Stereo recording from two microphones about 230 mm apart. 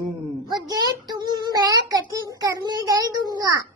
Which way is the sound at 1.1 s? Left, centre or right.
Centre.